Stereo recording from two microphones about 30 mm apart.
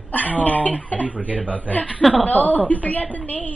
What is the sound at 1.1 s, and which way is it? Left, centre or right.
Speech, right.